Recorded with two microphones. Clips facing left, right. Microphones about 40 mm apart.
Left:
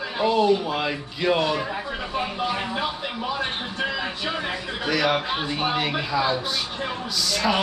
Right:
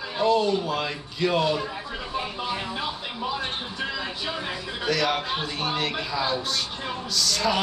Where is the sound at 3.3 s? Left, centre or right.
Left.